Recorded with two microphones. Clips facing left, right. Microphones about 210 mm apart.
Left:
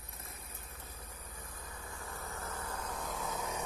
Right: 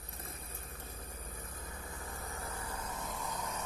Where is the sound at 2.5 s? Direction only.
10° right (ahead or behind); by 3.7 s 10° left (ahead or behind).